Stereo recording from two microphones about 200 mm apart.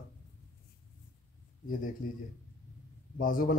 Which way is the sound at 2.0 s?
45° left (ahead or behind).